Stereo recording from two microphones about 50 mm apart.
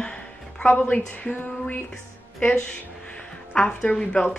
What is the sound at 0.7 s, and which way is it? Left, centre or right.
Speech, left.